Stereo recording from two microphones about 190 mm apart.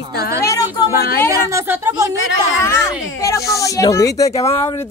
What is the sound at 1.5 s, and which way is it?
Speech, 15° right (ahead or behind).